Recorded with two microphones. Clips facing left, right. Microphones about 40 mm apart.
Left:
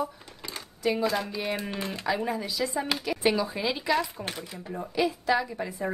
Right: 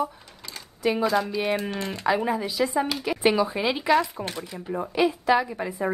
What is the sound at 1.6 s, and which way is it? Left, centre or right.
Speech, centre.